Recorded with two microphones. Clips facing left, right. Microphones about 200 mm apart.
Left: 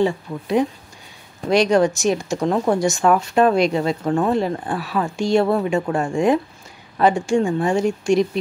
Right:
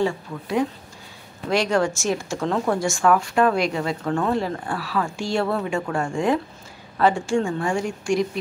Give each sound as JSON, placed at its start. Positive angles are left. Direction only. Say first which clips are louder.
{"t": 0.0, "sound": "speech", "louder": "left 4 dB", "side_deg": 20}